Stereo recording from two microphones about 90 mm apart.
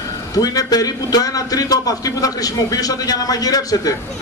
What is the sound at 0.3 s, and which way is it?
A man's voice, 45° left (ahead or behind).